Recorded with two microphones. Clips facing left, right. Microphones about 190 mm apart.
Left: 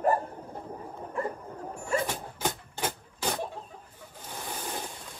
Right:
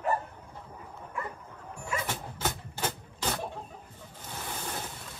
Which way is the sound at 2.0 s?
10° left (ahead or behind).